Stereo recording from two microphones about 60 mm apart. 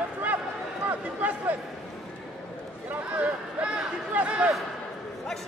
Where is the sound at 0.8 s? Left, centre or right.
Right.